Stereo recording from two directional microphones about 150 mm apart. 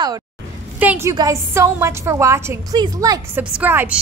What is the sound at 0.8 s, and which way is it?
Speech, 10° right (ahead or behind).